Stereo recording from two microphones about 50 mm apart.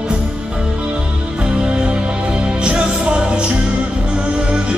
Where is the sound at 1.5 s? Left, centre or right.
Centre.